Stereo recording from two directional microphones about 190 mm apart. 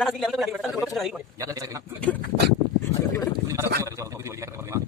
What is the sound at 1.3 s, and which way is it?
Speech, 15° right (ahead or behind).